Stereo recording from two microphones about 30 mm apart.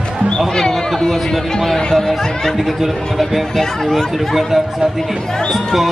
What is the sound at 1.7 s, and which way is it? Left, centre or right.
Speech, centre.